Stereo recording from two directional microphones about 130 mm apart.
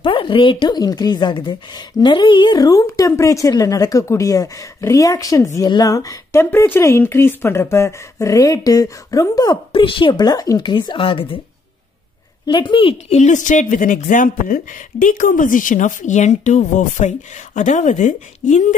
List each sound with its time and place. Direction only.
0.0 s speech: 40° left (ahead or behind)
9.7 s a woman's voice: 40° left (ahead or behind)
12.4 s a woman's voice: 40° left (ahead or behind)
13.2 s speech: 75° left (ahead or behind)